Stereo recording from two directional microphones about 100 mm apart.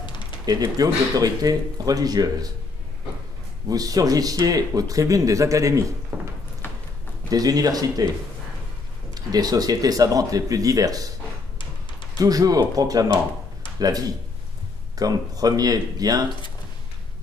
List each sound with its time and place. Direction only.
0.5 s speech: 40° right (ahead or behind)
3.6 s speech: 40° right (ahead or behind)
7.2 s speech: 40° right (ahead or behind)
9.1 s speech: 40° right (ahead or behind)
12.2 s speech: 35° right (ahead or behind)